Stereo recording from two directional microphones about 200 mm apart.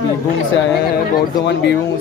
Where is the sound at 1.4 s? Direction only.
60° left (ahead or behind).